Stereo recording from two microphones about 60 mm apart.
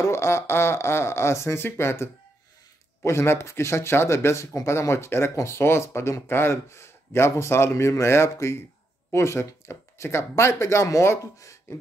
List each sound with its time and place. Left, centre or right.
0.0 s speech: left